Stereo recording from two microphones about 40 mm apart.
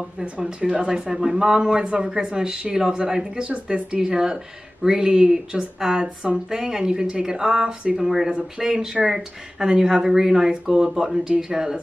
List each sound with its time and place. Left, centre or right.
0.4 s speech: centre
3.4 s speech: right; by 11.8 s centre